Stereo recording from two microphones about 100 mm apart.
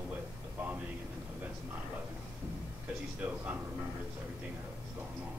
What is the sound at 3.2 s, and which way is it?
Speech, 20° right (ahead or behind).